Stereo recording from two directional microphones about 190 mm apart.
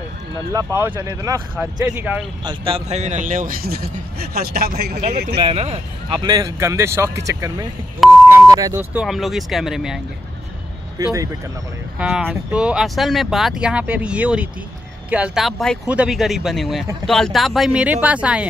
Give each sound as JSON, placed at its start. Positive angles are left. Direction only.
{"t": 0.7, "sound": "speech", "side_deg": -15}
{"t": 2.4, "sound": "speech", "side_deg": -30}
{"t": 5.4, "sound": "speech", "side_deg": -30}
{"t": 8.9, "sound": "speech", "side_deg": 0}
{"t": 11.0, "sound": "speech", "side_deg": -15}
{"t": 12.0, "sound": "speech", "side_deg": -5}